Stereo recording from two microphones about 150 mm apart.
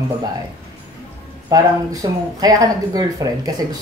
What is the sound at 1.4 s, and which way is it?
Speech, 25° right (ahead or behind).